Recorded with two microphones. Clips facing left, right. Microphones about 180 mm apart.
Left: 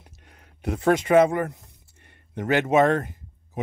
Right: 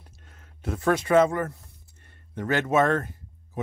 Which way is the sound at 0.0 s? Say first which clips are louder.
Left 1 dB; 15° left (ahead or behind).